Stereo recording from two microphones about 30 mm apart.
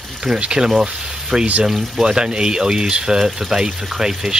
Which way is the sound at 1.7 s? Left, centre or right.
Centre.